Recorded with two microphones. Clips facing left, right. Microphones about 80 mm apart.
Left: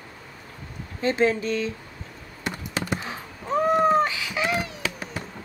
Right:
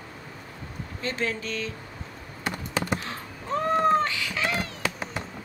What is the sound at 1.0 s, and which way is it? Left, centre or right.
Speech, left.